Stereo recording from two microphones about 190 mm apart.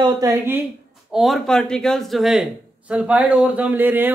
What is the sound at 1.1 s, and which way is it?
A man's voice, centre (ahead or behind).